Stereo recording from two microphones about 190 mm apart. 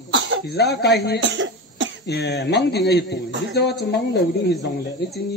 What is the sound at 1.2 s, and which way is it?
Cough, 70° right (ahead or behind).